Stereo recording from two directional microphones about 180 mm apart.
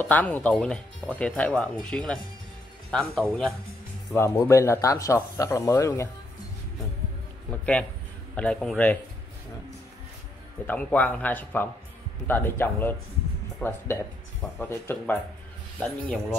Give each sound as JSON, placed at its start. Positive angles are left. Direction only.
{"t": 0.0, "sound": "speech", "side_deg": 10}
{"t": 8.4, "sound": "speech", "side_deg": 5}
{"t": 10.7, "sound": "speech", "side_deg": 10}